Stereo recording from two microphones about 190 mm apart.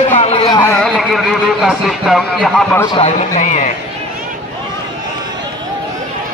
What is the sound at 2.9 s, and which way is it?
Speech, 35° left (ahead or behind).